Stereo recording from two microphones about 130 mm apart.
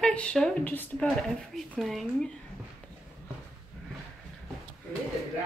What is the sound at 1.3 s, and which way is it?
Speech, centre (ahead or behind).